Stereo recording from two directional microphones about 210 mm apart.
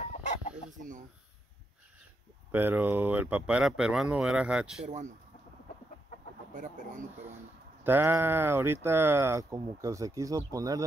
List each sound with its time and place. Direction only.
0.7 s a sound: 35° right (ahead or behind)
2.5 s speech: 10° right (ahead or behind)
4.8 s speech: 35° right (ahead or behind)
6.5 s speech: 40° right (ahead or behind)
7.8 s speech: 10° right (ahead or behind)